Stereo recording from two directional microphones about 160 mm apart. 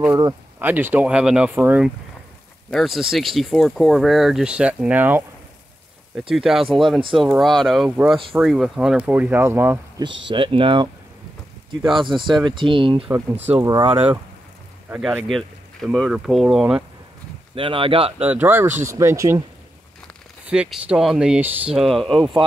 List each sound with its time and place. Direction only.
0.6 s speech: 10° right (ahead or behind)
2.7 s speech: centre (ahead or behind)
7.0 s speech: 30° right (ahead or behind)
7.3 s speech: centre (ahead or behind); by 10.0 s 15° right (ahead or behind)
10.3 s speech: 30° right (ahead or behind)
13.1 s speech: 15° right (ahead or behind)
15.2 s speech: centre (ahead or behind)
17.6 s speech: 35° right (ahead or behind)
18.2 s speech: 10° right (ahead or behind)
20.4 s speech: 5° right (ahead or behind)